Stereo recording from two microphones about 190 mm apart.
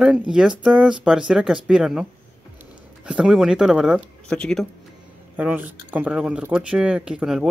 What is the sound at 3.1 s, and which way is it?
Speech, 5° right (ahead or behind).